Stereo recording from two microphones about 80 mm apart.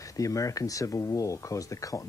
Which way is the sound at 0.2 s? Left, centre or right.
Left.